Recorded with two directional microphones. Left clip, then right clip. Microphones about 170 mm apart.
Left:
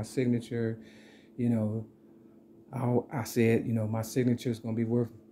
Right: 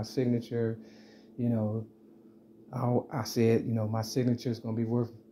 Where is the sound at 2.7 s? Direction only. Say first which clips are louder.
Even; 15° left (ahead or behind).